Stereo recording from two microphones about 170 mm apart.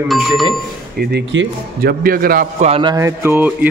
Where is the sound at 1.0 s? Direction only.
80° right; by 2.5 s 60° right (ahead or behind).